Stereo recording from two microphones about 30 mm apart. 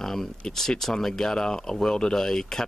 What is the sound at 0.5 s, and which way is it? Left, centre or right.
Speech, centre.